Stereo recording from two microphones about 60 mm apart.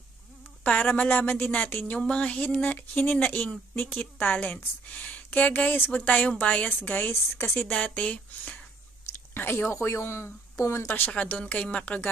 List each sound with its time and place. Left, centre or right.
0.9 s a woman's voice: left
2.0 s speech: centre
2.4 s a woman's voice: left
6.8 s a woman's voice: left
7.6 s a woman's voice: centre
9.3 s speech: left
9.8 s speech: left
11.1 s a woman's voice: left